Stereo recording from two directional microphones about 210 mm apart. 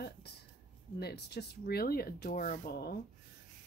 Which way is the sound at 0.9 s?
50° left (ahead or behind).